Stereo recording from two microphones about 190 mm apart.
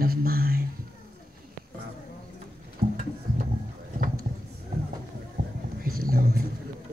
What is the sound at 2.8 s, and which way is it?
Music, 55° right (ahead or behind).